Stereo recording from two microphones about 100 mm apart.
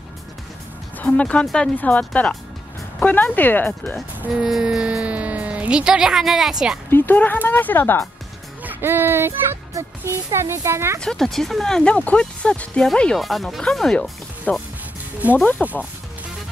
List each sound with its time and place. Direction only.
0.9 s speech: 15° left (ahead or behind)
4.4 s speech: 5° right (ahead or behind)
6.9 s speech: 20° left (ahead or behind)
8.6 s speech: 25° right (ahead or behind)
11.0 s speech: 5° left (ahead or behind)
14.5 s speech: 15° left (ahead or behind)
15.6 s speech: 15° right (ahead or behind)